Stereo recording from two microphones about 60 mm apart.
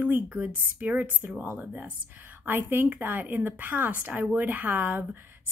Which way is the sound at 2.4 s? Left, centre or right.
Right.